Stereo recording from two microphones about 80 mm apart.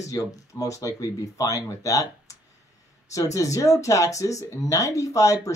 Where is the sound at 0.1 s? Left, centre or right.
Left.